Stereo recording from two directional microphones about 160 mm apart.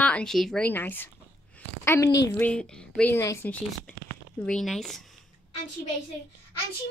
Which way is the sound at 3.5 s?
10° left (ahead or behind).